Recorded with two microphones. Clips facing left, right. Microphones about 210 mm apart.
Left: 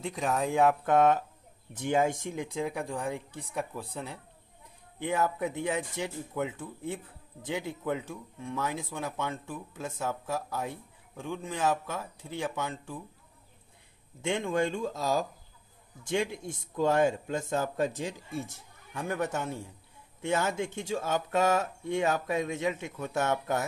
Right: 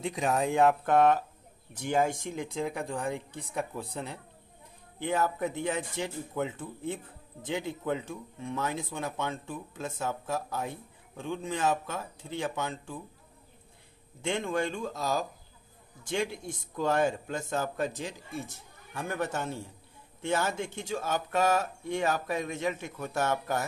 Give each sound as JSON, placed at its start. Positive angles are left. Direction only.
{"t": 0.0, "sound": "speech", "side_deg": 0}
{"t": 1.7, "sound": "a woman's voice", "side_deg": 20}
{"t": 14.2, "sound": "a woman's voice", "side_deg": 15}